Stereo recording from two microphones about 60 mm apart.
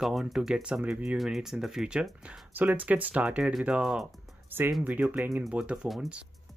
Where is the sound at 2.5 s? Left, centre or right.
Right; by 4.1 s centre.